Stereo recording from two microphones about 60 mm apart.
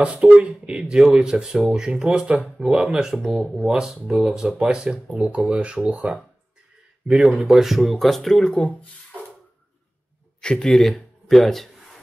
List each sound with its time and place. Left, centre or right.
0.0 s speech: right
7.5 s speech: centre
10.4 s speech: centre
11.2 s a sound: centre